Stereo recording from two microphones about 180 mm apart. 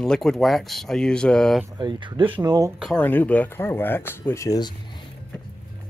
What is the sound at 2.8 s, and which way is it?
Speech, 5° left (ahead or behind).